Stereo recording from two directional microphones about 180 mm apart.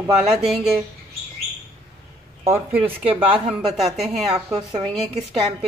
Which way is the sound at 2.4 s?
10° right (ahead or behind).